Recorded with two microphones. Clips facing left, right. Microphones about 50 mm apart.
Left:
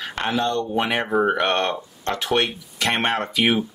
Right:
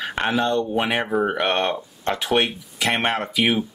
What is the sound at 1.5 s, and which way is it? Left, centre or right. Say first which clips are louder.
Speech: even; centre.